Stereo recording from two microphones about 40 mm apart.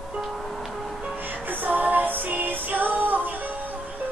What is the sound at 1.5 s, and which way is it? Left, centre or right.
Music, right.